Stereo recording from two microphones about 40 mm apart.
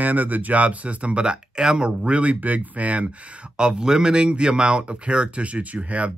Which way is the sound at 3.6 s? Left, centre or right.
Centre.